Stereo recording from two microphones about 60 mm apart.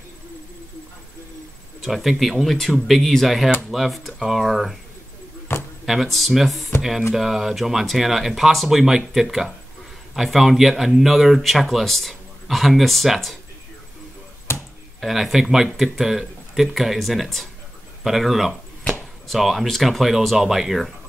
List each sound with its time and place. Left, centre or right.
1.8 s speech: centre
5.5 s a sound: left
5.9 s speech: centre
14.5 s chop: left
15.0 s speech: centre
18.0 s a sound: centre
18.9 s speech: centre